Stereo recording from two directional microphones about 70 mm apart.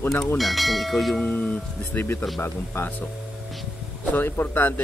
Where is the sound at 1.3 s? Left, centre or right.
Left.